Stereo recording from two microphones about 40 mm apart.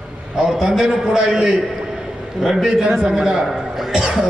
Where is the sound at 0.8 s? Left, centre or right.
Centre.